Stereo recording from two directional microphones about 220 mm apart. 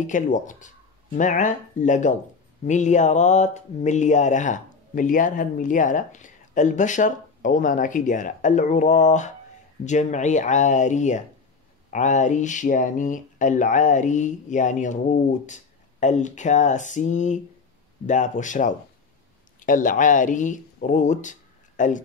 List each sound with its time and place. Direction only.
0.0 s speech: 35° left (ahead or behind)